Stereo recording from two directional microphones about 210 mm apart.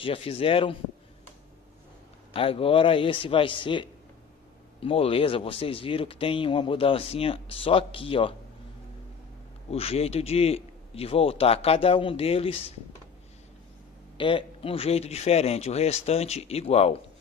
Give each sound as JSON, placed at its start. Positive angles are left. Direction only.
{"t": 0.0, "sound": "a man's voice", "side_deg": 25}
{"t": 2.3, "sound": "a man's voice", "side_deg": 25}
{"t": 9.7, "sound": "a man's voice", "side_deg": 30}
{"t": 14.1, "sound": "a man's voice", "side_deg": 25}